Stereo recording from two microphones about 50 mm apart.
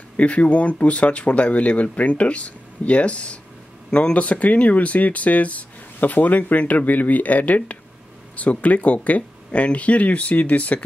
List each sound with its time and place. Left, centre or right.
0.2 s speech: left